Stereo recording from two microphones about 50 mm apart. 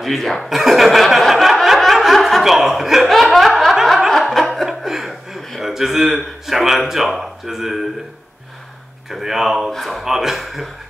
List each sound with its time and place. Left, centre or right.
0.0 s chuckle: centre
3.7 s snicker: centre
4.6 s chuckle: centre
5.6 s a man's voice: centre
9.1 s speech: centre